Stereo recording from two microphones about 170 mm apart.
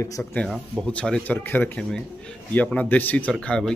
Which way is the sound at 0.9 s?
5° left (ahead or behind).